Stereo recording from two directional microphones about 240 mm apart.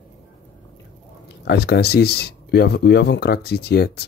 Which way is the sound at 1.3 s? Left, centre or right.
Left.